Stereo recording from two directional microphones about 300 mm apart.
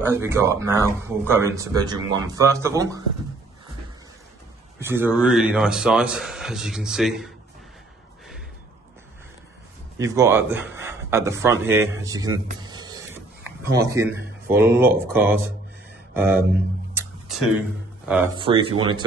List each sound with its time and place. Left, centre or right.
0.0 s speech: centre
4.8 s a man's voice: centre
9.9 s a man's voice: centre
12.5 s a sound: centre
13.7 s speech: centre
16.9 s a sound: centre
18.4 s speech: centre